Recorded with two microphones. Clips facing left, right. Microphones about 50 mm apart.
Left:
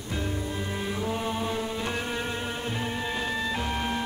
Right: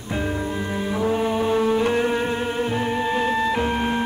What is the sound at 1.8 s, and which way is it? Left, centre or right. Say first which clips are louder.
Music: right 10 dB; right.